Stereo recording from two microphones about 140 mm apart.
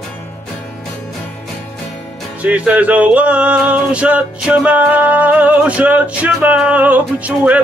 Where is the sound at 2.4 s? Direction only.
10° right (ahead or behind).